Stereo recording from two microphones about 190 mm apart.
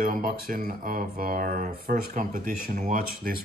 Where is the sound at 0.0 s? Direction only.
50° right (ahead or behind).